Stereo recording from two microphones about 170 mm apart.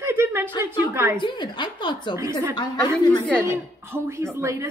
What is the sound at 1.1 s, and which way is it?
A woman's voice, 30° left (ahead or behind).